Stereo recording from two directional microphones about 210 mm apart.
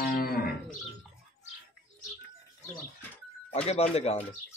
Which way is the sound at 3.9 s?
30° left (ahead or behind).